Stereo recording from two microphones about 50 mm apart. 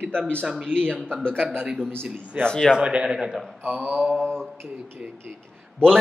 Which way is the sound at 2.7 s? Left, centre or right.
Centre.